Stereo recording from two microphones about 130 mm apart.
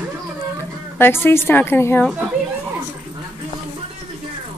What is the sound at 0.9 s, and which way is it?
A woman's voice, 15° left (ahead or behind).